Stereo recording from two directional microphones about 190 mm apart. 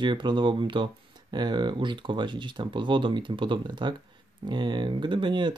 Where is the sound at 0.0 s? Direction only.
25° right (ahead or behind).